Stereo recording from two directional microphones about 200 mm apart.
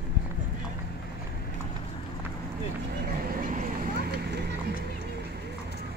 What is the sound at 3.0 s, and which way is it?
Vehicle, 45° right (ahead or behind).